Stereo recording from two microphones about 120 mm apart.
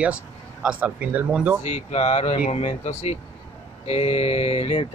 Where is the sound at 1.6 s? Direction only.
65° left (ahead or behind).